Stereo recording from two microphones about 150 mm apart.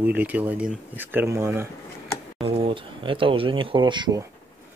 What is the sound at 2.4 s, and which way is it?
Speech, 35° right (ahead or behind).